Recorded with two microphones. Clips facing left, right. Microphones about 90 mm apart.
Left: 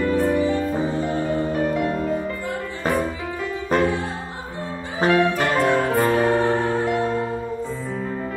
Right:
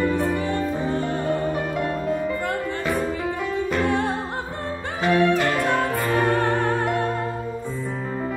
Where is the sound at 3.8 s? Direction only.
60° right (ahead or behind).